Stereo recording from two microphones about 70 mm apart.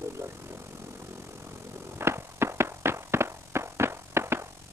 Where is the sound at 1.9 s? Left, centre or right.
Right.